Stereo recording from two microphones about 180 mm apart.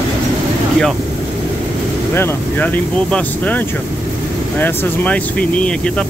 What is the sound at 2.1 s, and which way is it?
Speech, 10° left (ahead or behind).